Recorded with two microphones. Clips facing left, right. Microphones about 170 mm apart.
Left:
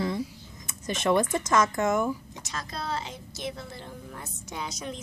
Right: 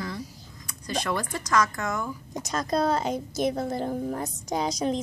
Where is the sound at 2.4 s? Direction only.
40° right (ahead or behind).